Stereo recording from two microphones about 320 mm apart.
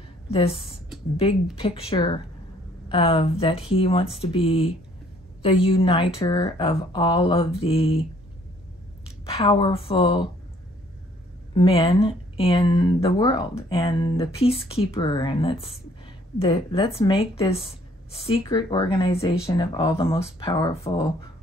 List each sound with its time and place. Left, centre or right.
0.3 s speech: centre
9.2 s speech: centre
11.5 s speech: centre